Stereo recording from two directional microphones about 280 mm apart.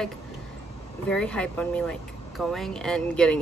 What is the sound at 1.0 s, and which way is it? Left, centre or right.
Speech, centre.